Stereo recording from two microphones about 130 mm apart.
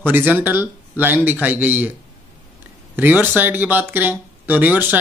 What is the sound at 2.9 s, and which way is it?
Speech, 15° right (ahead or behind).